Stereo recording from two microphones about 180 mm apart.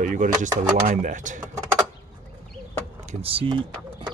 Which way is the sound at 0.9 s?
45° right (ahead or behind).